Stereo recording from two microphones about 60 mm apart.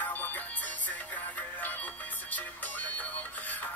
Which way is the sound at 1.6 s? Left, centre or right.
Left.